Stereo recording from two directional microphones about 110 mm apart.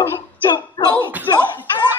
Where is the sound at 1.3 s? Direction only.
40° left (ahead or behind).